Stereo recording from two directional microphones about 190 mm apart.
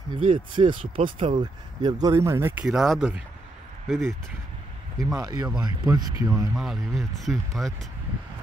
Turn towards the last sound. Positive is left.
turn(degrees=0)  # may be behind; listen again after turning